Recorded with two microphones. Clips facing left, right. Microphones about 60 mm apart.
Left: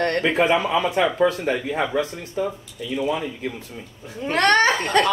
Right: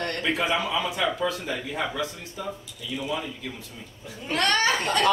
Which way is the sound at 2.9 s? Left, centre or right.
Left.